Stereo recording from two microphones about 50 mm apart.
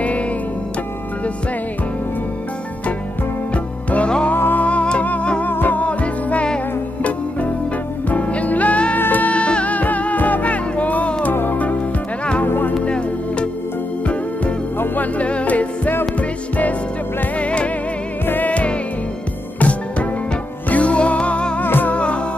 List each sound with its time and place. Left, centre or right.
3.5 s music: left
4.4 s music: left
4.6 s music: left
5.5 s music: left
5.8 s music: left
12.4 s music: left
12.8 s music: left
15.1 s music: left
18.2 s music: left
18.5 s music: left
21.6 s music: left
21.9 s music: left